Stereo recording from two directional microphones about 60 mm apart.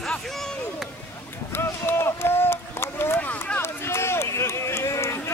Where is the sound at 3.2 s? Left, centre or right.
Left.